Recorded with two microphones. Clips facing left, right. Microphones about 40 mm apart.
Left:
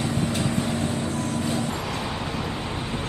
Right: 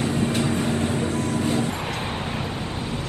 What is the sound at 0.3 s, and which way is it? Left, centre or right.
Vehicle, right.